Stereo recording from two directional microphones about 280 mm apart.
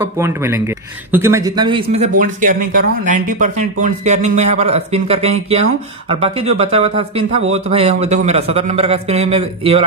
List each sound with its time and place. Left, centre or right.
0.0 s speech: centre